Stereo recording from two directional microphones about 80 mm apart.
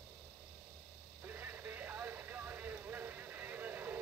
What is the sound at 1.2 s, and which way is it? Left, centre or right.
Radio, right.